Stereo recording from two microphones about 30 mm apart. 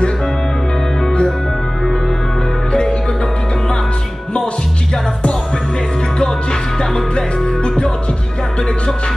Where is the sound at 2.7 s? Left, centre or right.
Left.